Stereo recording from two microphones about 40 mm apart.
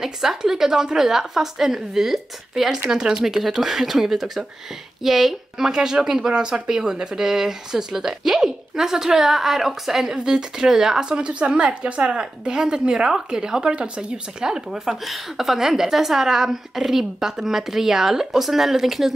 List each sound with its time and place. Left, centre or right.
0.0 s a woman's voice: centre
10.1 s a woman's voice: centre
11.1 s a woman's voice: right; by 19.1 s centre